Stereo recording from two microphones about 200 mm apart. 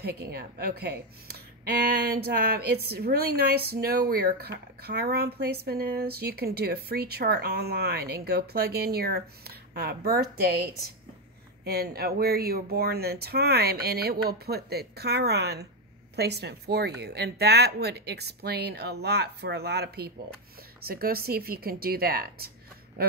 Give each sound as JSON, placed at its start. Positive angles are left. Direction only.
{"t": 0.0, "sound": "speech", "side_deg": -50}